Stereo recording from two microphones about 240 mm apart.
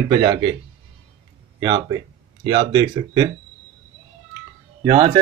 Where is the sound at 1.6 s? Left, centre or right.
Centre.